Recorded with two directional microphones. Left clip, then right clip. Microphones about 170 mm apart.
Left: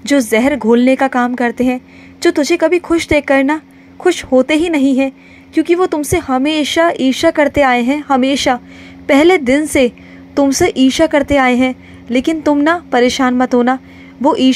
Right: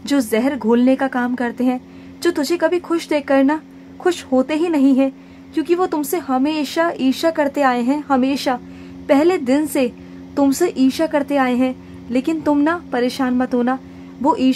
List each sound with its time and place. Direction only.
0.0 s a woman's voice: 15° left (ahead or behind)